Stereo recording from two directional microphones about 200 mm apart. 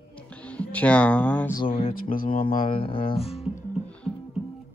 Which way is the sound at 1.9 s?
45° left (ahead or behind).